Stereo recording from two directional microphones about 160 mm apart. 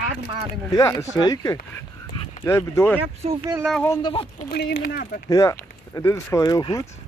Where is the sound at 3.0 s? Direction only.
35° right (ahead or behind).